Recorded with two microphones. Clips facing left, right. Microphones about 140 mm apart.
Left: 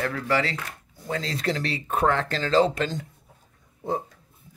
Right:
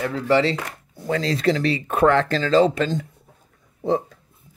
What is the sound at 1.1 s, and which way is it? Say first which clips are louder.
Speech: right 7 dB; 85° right.